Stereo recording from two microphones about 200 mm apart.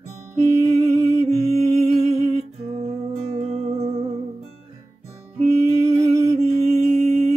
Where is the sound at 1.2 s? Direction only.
35° right (ahead or behind).